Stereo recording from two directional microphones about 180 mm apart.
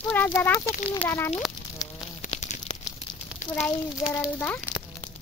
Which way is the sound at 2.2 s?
40° left (ahead or behind).